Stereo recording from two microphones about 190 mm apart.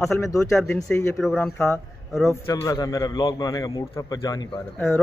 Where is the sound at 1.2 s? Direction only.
Centre (ahead or behind).